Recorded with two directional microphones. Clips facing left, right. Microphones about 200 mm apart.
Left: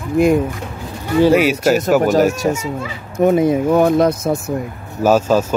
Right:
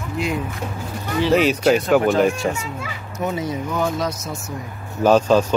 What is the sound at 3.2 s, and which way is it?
Speech, 55° left (ahead or behind).